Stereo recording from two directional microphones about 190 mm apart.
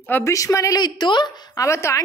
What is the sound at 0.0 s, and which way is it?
A woman's voice, 10° left (ahead or behind).